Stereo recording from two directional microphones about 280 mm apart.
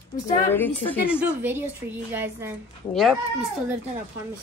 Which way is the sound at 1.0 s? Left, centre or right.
Centre.